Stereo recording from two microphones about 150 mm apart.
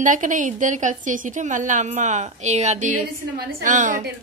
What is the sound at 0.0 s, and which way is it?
A woman's voice, 60° right (ahead or behind).